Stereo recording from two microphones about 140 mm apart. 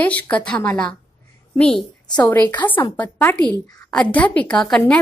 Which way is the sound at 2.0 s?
30° left (ahead or behind).